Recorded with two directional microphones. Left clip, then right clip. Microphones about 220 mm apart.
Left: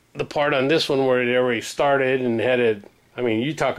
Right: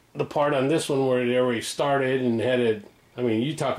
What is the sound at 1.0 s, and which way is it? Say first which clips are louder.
Speech: left 3 dB; 20° right (ahead or behind).